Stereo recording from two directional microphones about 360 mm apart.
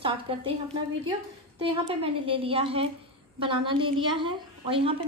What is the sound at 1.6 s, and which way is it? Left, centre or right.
A woman's voice, centre.